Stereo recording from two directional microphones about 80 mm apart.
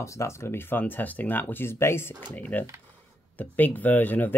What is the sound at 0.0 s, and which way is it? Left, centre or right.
Speech, left.